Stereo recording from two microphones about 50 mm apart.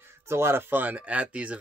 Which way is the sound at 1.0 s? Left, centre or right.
Right.